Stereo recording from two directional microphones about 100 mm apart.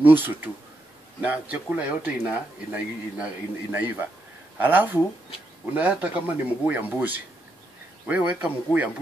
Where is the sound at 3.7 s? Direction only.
20° right (ahead or behind).